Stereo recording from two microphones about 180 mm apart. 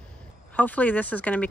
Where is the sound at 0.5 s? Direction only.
10° left (ahead or behind).